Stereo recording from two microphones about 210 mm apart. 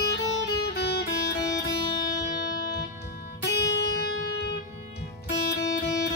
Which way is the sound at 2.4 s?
50° left (ahead or behind).